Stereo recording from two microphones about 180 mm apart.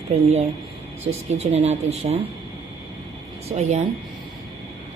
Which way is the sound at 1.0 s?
35° right (ahead or behind).